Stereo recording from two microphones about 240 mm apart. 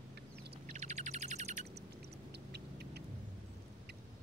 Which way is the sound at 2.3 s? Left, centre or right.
Right.